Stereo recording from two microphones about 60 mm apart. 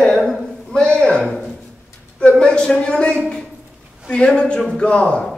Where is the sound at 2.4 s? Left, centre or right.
Centre.